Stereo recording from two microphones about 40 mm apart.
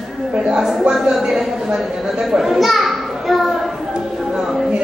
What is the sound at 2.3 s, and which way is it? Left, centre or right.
Children playing, centre.